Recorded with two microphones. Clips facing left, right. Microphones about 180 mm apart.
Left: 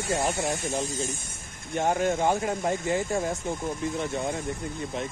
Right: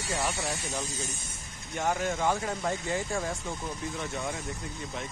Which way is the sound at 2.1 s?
25° left (ahead or behind).